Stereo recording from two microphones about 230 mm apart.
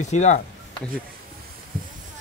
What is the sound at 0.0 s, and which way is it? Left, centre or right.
Speech, left.